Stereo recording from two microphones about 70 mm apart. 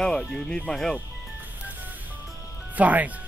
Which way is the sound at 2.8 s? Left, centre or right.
Right.